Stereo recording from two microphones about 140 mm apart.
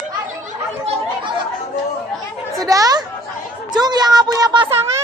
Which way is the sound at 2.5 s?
25° right (ahead or behind).